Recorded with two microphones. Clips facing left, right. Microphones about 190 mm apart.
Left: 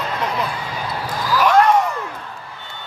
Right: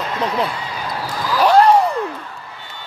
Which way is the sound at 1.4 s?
30° right (ahead or behind).